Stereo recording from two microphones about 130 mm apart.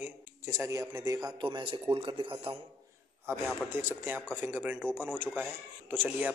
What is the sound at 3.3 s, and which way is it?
A man's voice, 15° right (ahead or behind).